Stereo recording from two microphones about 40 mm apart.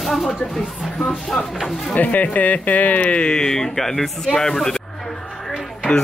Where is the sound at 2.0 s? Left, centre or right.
Left.